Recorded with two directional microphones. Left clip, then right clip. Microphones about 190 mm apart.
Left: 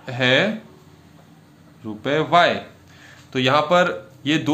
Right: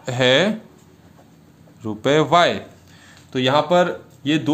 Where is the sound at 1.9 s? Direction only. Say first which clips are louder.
Right 3 dB; 45° right (ahead or behind).